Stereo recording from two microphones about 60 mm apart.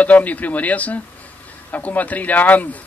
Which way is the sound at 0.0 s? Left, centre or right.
Left.